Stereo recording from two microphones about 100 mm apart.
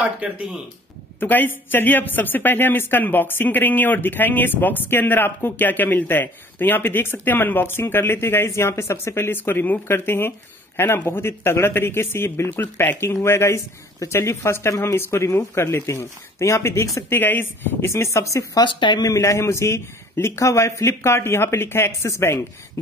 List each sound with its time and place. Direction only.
1.2 s speech: 20° left (ahead or behind)
17.1 s speech: 20° left (ahead or behind)
18.6 s speech: 50° left (ahead or behind)
19.0 s speech: 30° left (ahead or behind)